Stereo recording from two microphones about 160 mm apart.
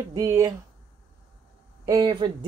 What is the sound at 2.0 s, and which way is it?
Speech, 35° right (ahead or behind).